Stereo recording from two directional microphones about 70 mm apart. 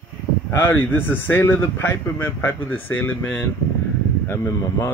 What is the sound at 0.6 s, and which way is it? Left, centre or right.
Speech, left.